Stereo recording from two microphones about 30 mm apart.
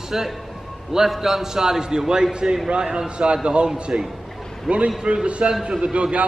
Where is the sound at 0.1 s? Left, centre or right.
Centre.